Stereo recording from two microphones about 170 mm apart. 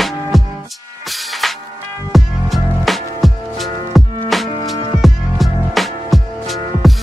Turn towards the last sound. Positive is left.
turn(degrees=0)  # may be behind; listen again after turning